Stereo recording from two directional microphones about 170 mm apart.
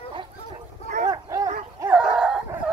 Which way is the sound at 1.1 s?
20° right (ahead or behind).